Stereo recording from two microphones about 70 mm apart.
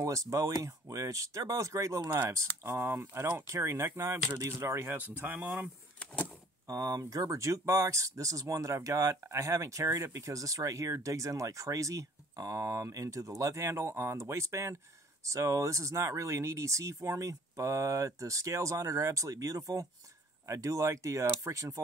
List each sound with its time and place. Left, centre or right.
0.0 s speech: right
2.6 s speech: right
6.7 s speech: right